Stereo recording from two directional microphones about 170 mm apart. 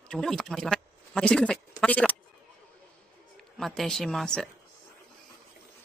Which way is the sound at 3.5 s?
Centre (ahead or behind).